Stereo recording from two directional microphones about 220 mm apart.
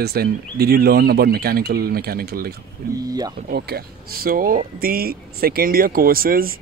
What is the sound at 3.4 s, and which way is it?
Speech, 45° right (ahead or behind).